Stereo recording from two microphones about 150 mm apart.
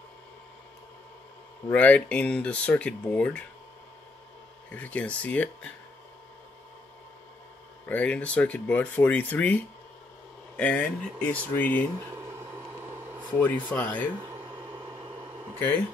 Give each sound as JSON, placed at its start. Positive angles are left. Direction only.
{"t": 1.7, "sound": "speech", "side_deg": 10}
{"t": 4.6, "sound": "speech", "side_deg": 10}
{"t": 7.9, "sound": "speech", "side_deg": 10}
{"t": 10.6, "sound": "speech", "side_deg": 10}
{"t": 13.4, "sound": "speech", "side_deg": 10}
{"t": 14.3, "sound": "a sound", "side_deg": -35}